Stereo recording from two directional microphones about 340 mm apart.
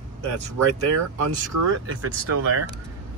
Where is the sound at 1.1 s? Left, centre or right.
Right.